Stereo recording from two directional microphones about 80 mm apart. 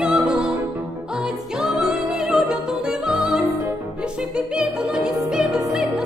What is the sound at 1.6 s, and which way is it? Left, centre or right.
Music, centre.